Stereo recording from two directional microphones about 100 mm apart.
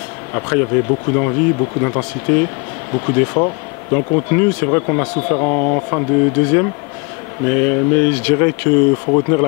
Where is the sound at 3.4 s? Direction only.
30° left (ahead or behind).